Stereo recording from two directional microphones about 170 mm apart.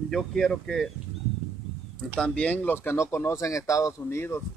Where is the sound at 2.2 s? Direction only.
5° left (ahead or behind).